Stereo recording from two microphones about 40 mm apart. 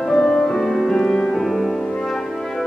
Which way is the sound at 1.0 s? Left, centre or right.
Centre.